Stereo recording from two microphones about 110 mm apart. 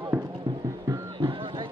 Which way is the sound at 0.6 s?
25° right (ahead or behind).